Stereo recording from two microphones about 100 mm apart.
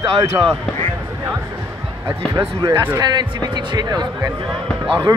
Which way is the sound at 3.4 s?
45° right (ahead or behind).